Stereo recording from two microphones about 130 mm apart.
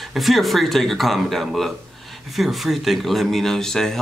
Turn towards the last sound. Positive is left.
turn(degrees=5)  # may be behind; listen again after turning